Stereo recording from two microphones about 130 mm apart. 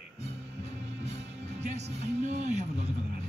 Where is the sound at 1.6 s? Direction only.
60° right (ahead or behind).